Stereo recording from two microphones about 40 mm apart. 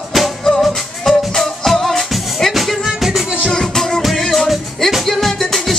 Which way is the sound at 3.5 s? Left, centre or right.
Centre.